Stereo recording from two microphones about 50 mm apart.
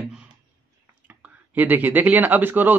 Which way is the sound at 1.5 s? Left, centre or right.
Right.